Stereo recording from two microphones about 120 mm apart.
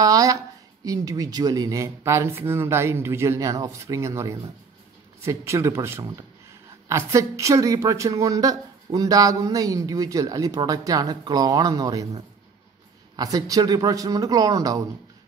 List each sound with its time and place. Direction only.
0.0 s a woman's voice: 30° right (ahead or behind)